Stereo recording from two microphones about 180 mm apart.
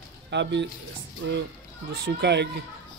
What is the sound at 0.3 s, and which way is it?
Speech, 75° right (ahead or behind).